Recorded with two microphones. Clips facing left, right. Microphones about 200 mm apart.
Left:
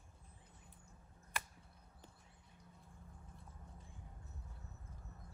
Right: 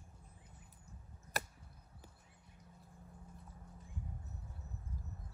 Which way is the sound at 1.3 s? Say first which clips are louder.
Right 5 dB; 40° right (ahead or behind).